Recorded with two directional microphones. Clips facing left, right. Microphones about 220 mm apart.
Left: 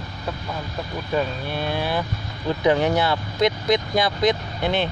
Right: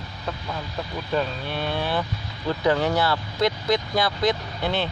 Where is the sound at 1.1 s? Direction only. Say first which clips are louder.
Left 2 dB; 10° left (ahead or behind).